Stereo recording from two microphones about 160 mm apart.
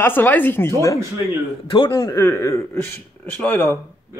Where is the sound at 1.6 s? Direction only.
35° left (ahead or behind).